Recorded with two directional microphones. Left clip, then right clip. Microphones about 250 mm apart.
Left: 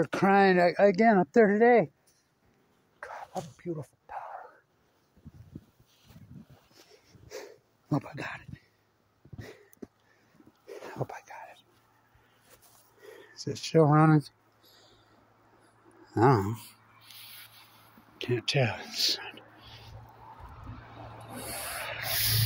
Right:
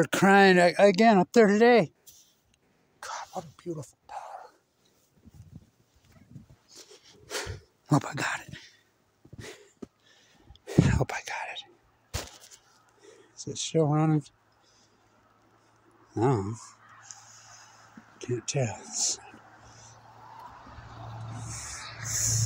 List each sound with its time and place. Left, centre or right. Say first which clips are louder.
0.0 s speech: right 3 dB; right
3.0 s throat clearing: right 2 dB; centre
4.1 s dog: even; centre
7.2 s a sound: right 8 dB; right
10.6 s whispering: right 10 dB; right
13.3 s speech: left 2 dB; centre
16.2 s speech: left 3 dB; centre
18.2 s speech: left 3 dB; centre
21.7 s rub: left 3 dB; left